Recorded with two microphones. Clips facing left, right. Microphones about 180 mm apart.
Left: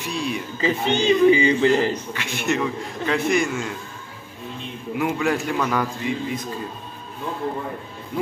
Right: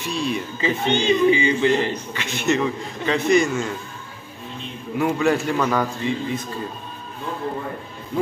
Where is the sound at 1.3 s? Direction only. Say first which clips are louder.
Left 2 dB; 40° left (ahead or behind).